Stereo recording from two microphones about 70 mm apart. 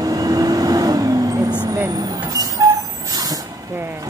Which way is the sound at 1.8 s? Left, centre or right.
Right.